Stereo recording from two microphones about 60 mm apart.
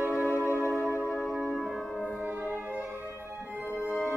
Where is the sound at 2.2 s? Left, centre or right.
Right.